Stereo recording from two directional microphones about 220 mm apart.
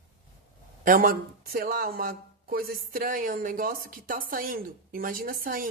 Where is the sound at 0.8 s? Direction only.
40° right (ahead or behind).